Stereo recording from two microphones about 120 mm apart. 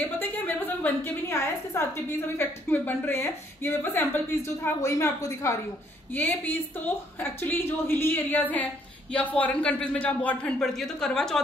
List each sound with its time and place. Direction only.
0.0 s a woman's voice: 15° left (ahead or behind)